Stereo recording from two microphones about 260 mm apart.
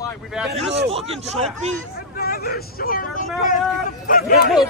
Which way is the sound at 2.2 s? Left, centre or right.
Left.